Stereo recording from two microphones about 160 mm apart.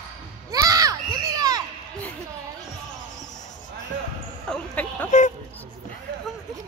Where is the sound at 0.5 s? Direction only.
20° right (ahead or behind).